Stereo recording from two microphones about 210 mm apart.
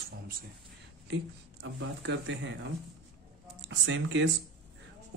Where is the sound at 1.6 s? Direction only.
60° right (ahead or behind).